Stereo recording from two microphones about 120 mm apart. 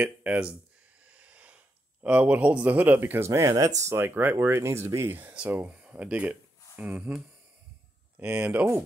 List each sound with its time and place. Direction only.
0.0 s speech: 10° right (ahead or behind)
1.0 s a sound: 10° right (ahead or behind)
2.0 s speech: 10° right (ahead or behind)
8.2 s speech: 10° right (ahead or behind)